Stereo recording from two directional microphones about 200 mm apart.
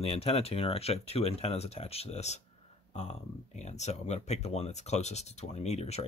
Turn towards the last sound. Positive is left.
turn(degrees=30)  # may be behind; listen again after turning